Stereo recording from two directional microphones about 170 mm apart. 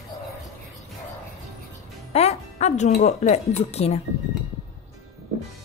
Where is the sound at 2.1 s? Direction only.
40° left (ahead or behind).